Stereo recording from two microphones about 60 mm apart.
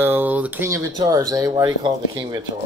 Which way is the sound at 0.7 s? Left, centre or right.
Right.